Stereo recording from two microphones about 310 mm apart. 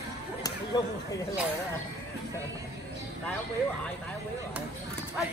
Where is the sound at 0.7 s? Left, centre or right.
Centre.